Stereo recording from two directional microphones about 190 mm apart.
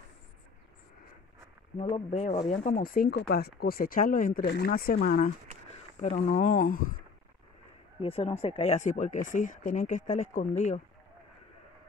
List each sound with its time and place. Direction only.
1.8 s speech: 35° left (ahead or behind); by 5.3 s 50° left (ahead or behind)
5.9 s speech: 40° left (ahead or behind)
8.0 s speech: 30° left (ahead or behind)